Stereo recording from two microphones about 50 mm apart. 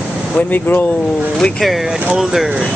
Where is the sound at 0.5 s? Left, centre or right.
Left.